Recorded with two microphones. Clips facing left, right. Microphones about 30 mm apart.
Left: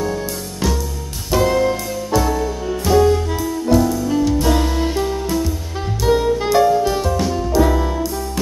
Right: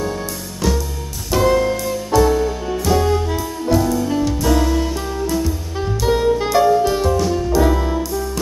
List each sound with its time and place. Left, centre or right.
1.3 s music: centre
4.4 s music: centre
5.3 s music: centre